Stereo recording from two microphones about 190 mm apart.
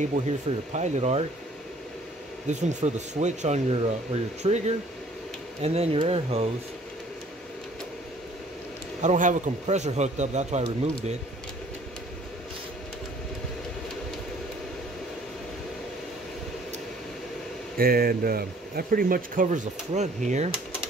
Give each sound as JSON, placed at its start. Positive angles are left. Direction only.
{"t": 0.2, "sound": "a man's voice", "side_deg": -40}
{"t": 2.4, "sound": "a man's voice", "side_deg": -40}
{"t": 9.0, "sound": "a man's voice", "side_deg": -40}
{"t": 17.7, "sound": "speech", "side_deg": -50}